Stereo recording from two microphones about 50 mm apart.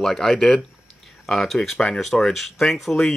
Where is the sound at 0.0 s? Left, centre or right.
Centre.